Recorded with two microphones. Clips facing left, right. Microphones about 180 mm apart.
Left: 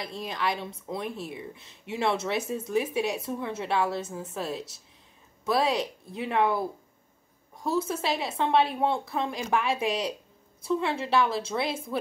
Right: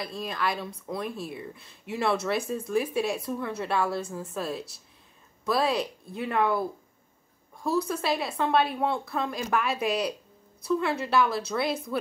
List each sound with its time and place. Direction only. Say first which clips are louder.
0.0 s a woman's voice: even; 20° left (ahead or behind)
7.5 s a woman's voice: right 1 dB; 25° left (ahead or behind)